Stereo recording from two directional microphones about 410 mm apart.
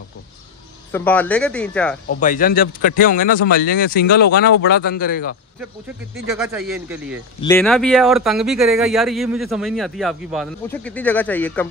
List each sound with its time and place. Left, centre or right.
0.9 s speech: centre
2.1 s speech: centre
6.1 s speech: centre